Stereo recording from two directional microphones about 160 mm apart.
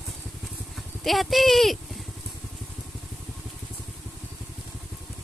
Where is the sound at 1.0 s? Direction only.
Centre (ahead or behind).